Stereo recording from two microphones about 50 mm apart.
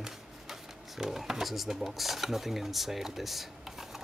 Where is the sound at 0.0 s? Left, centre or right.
Centre.